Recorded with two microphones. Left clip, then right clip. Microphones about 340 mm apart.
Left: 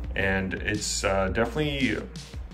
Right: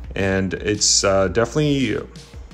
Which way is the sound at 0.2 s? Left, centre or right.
Centre.